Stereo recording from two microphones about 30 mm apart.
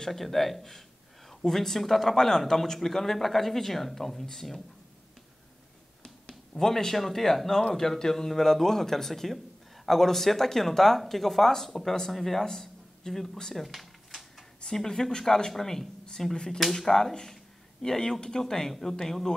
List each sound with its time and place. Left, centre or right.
0.0 s a sound: centre
1.5 s speech: centre
6.0 s speech: centre
13.1 s speech: centre
13.7 s a sound: centre
14.7 s speech: centre
18.7 s speech: centre